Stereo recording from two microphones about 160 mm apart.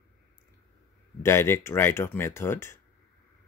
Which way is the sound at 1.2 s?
15° left (ahead or behind).